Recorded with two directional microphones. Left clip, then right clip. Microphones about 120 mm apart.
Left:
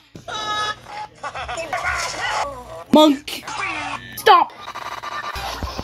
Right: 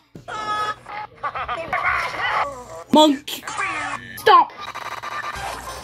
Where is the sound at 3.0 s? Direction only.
15° left (ahead or behind).